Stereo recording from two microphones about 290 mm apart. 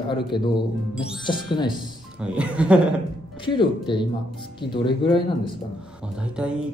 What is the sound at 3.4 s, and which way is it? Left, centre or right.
Speech, centre.